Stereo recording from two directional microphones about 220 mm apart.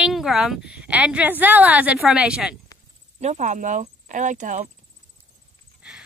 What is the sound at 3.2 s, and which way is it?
Speech, 30° right (ahead or behind).